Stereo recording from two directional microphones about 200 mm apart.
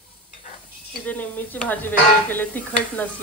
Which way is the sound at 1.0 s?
10° left (ahead or behind).